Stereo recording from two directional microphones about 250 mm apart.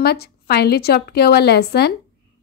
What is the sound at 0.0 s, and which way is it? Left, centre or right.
A woman's voice, left.